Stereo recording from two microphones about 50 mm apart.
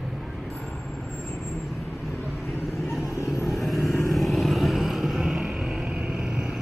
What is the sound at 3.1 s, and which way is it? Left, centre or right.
Vehicle, left.